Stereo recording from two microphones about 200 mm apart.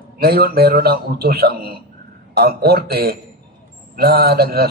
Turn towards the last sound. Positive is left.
turn(degrees=-50)  # may be behind; listen again after turning